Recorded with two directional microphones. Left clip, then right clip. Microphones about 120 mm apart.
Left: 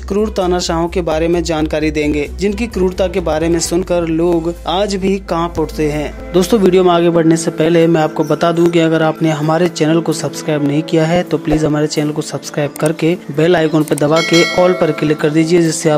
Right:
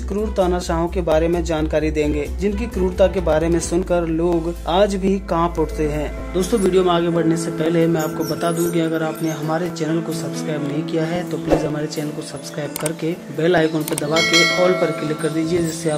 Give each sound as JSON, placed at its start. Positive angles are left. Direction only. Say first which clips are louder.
{"t": 0.1, "sound": "speech", "louder": "left 5 dB", "side_deg": 15}
{"t": 6.3, "sound": "speech", "louder": "left 7 dB", "side_deg": 45}
{"t": 14.1, "sound": "speech", "louder": "left 2 dB", "side_deg": 0}
{"t": 15.0, "sound": "speech", "louder": "left 8 dB", "side_deg": 45}